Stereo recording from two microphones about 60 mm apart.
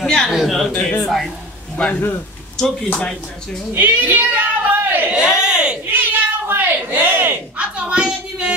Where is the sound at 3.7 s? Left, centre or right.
Right.